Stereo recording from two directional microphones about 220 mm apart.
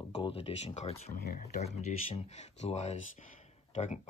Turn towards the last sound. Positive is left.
turn(degrees=30)  # may be behind; listen again after turning